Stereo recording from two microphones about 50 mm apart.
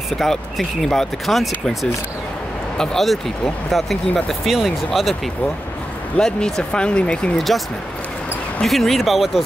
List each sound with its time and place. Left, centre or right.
0.2 s speech: centre
6.1 s speech: centre
7.3 s speech: centre
8.6 s speech: centre